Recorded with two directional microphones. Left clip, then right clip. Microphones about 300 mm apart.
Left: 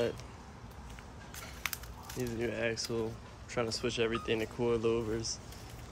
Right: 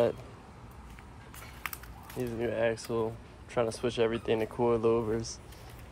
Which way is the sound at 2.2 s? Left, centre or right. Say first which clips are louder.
Right 5 dB; centre.